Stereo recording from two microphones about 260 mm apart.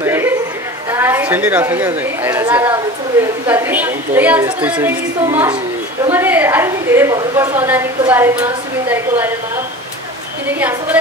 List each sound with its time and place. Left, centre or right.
0.0 s chatter: centre
0.9 s a woman's voice: centre